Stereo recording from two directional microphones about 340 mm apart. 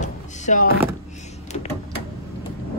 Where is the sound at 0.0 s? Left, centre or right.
Left.